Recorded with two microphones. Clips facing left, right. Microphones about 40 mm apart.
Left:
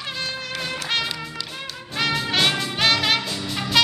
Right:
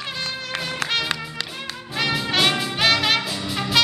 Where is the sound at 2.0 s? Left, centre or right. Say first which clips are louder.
Even; centre.